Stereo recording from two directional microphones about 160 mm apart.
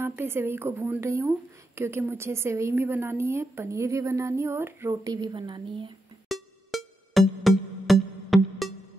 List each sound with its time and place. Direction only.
0.0 s a woman's voice: 15° right (ahead or behind)
6.2 s music: centre (ahead or behind)